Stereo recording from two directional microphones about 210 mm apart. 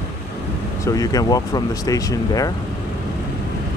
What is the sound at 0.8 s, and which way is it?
Speech, 15° left (ahead or behind).